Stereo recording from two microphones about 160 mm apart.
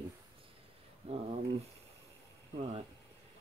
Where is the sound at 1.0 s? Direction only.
40° right (ahead or behind).